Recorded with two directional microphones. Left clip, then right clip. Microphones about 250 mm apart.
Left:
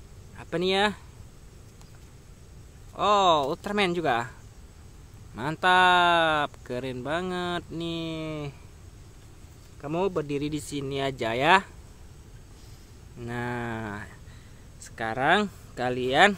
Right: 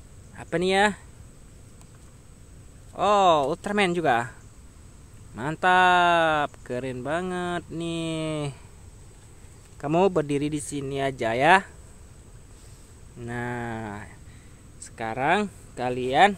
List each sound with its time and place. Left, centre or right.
0.4 s speech: centre
2.9 s speech: centre
9.8 s speech: right
13.2 s speech: centre